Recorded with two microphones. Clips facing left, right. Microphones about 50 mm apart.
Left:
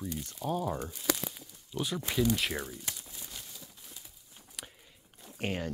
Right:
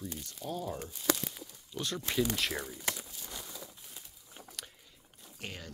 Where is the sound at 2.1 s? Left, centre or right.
Centre.